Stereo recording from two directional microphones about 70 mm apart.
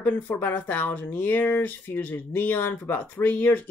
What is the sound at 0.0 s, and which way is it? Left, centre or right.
Speech, left.